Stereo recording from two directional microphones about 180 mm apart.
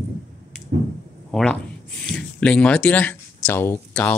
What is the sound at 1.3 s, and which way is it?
Speech, 5° left (ahead or behind).